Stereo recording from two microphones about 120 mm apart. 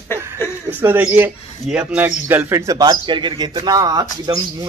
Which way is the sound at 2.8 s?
40° right (ahead or behind).